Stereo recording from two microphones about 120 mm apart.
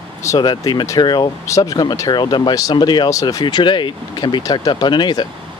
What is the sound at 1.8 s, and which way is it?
Speech, 35° left (ahead or behind).